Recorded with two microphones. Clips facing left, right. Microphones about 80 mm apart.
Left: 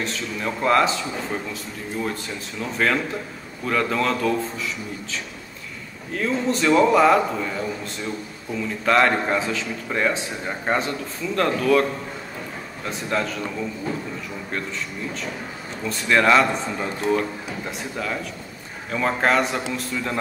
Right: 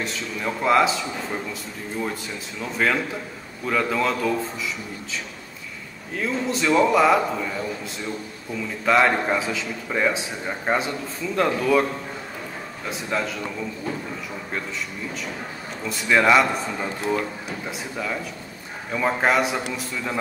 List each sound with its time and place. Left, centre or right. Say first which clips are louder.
0.0 s speech: left 1 dB; centre
2.6 s speech: left 1 dB; centre
6.1 s speech: left 2 dB; centre
10.8 s a man's voice: left 1 dB; centre
12.8 s speech: left 1 dB; centre
15.8 s a man's voice: even; centre